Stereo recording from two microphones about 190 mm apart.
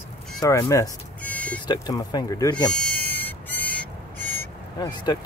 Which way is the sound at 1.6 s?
20° left (ahead or behind).